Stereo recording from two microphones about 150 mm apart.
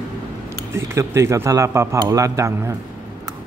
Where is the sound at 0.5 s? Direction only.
20° right (ahead or behind).